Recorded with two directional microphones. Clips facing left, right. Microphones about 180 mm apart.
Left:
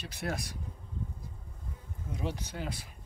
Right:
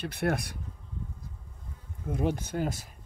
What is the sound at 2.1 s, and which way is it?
Speech, 50° right (ahead or behind).